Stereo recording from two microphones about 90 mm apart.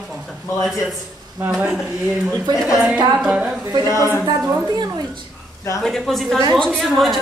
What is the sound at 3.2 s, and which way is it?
Speech, 10° right (ahead or behind).